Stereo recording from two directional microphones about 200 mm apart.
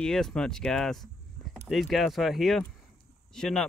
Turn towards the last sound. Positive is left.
turn(degrees=0)  # may be behind; listen again after turning